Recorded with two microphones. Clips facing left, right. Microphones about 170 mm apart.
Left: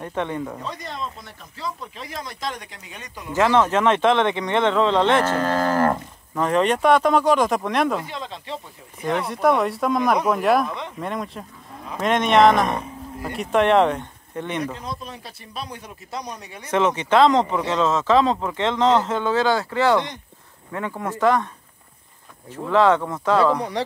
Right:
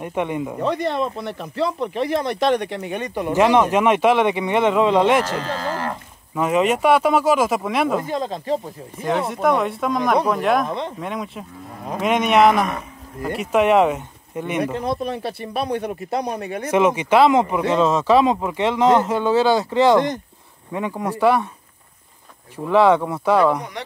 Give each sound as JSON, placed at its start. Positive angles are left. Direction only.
{"t": 0.0, "sound": "speech", "side_deg": -15}
{"t": 0.6, "sound": "speech", "side_deg": -65}
{"t": 3.3, "sound": "speech", "side_deg": -15}
{"t": 5.2, "sound": "speech", "side_deg": 50}
{"t": 6.3, "sound": "speech", "side_deg": -5}
{"t": 8.1, "sound": "speech", "side_deg": -40}
{"t": 9.3, "sound": "speech", "side_deg": 0}
{"t": 14.8, "sound": "speech", "side_deg": -65}
{"t": 16.7, "sound": "speech", "side_deg": -10}
{"t": 22.7, "sound": "speech", "side_deg": -10}